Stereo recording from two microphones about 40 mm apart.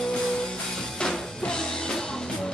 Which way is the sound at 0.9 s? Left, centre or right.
Centre.